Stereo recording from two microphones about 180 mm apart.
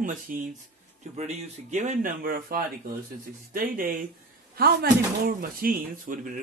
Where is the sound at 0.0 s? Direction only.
50° right (ahead or behind).